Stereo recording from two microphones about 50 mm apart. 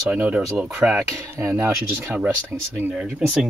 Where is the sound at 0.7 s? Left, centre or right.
Centre.